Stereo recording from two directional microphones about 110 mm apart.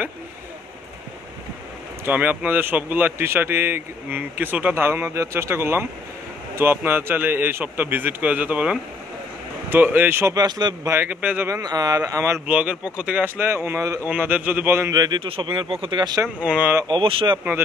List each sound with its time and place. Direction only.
2.0 s a man's voice: 15° right (ahead or behind)
10.3 s speech: 40° right (ahead or behind)
10.9 s speech: 15° right (ahead or behind)
11.4 s speech: 30° right (ahead or behind)
12.4 s speech: 10° right (ahead or behind); by 14.0 s 30° right (ahead or behind)
14.0 s speech: 15° right (ahead or behind)
15.0 s speech: 45° right (ahead or behind)
16.3 s speech: 15° right (ahead or behind)
16.8 s speech: 50° right (ahead or behind)